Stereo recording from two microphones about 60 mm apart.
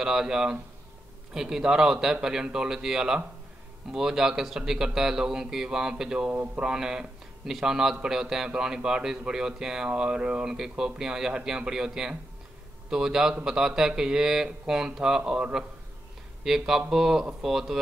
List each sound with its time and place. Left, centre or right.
0.0 s speech: centre
6.3 s mantra: right
6.6 s speech: centre